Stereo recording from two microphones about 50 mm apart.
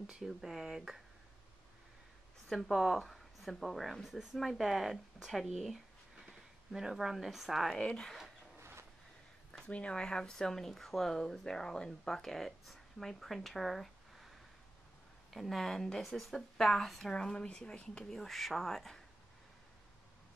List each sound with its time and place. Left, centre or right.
0.0 s speech: centre
2.5 s a woman's voice: centre
7.8 s speech: centre
8.5 s a sound: right
9.7 s speech: left; by 14.2 s centre
15.3 s speech: centre; by 18.0 s left
18.1 s speech: centre